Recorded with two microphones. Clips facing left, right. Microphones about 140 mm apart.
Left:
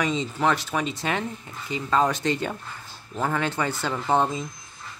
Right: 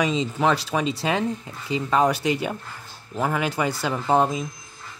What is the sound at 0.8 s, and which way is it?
Speech, 30° right (ahead or behind).